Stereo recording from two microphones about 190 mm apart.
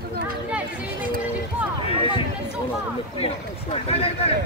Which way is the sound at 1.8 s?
25° left (ahead or behind).